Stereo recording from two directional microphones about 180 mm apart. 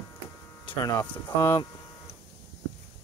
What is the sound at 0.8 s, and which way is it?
Speech, 20° left (ahead or behind).